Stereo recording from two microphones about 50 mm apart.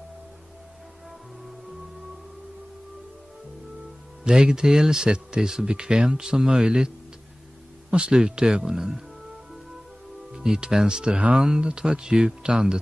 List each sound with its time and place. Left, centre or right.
4.2 s speech: centre
7.9 s speech: centre
10.3 s speech: centre